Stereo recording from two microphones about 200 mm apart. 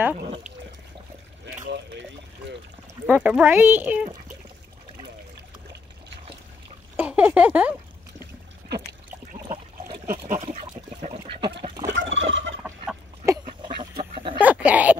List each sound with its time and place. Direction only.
3.1 s speech: 5° right (ahead or behind)
7.0 s speech: 5° right (ahead or behind)
9.9 s pig: 45° right (ahead or behind)
11.0 s duck: 30° right (ahead or behind)
11.6 s fowl: 20° right (ahead or behind)
11.9 s fowl: 70° right (ahead or behind)
12.6 s duck: 15° right (ahead or behind)
13.7 s duck: 25° right (ahead or behind)
14.4 s a sound: 5° right (ahead or behind)